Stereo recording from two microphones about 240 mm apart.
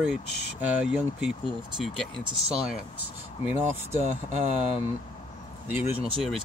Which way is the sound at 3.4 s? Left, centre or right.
Centre.